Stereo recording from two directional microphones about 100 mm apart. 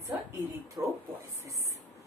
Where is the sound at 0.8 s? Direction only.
30° right (ahead or behind).